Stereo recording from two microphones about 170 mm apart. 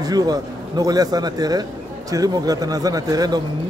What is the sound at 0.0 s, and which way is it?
Speech, 20° right (ahead or behind).